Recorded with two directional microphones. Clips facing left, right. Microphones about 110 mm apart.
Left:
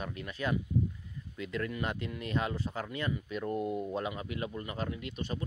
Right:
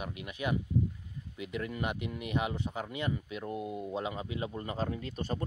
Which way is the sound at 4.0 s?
25° right (ahead or behind).